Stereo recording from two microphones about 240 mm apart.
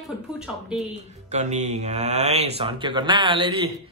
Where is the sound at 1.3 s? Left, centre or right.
Right.